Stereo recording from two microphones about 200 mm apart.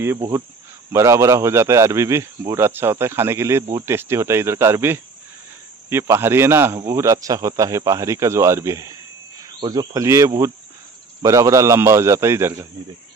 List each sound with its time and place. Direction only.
0.0 s a man's voice: 15° right (ahead or behind)